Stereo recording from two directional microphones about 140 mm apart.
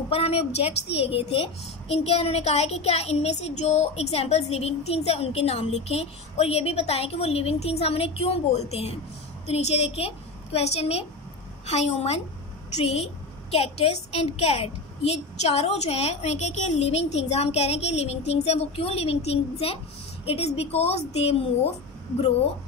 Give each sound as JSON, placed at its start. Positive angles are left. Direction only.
{"t": 0.1, "sound": "a woman's voice", "side_deg": 45}